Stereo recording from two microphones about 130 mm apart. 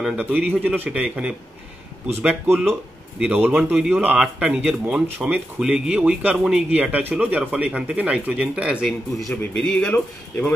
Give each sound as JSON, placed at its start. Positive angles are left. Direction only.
{"t": 0.0, "sound": "speech", "side_deg": -10}
{"t": 2.4, "sound": "speech", "side_deg": -15}
{"t": 9.6, "sound": "speech", "side_deg": 5}